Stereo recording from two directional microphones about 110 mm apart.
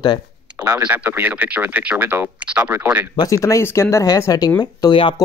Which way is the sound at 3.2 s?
30° left (ahead or behind).